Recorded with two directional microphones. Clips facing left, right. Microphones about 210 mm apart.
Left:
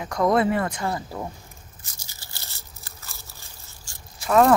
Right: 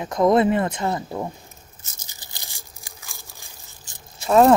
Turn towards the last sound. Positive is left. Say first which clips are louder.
# right 3 dB
turn(degrees=-25)  # may be behind; listen again after turning